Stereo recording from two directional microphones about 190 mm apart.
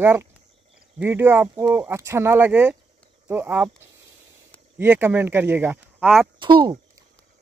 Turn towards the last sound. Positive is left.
turn(degrees=-25)  # may be behind; listen again after turning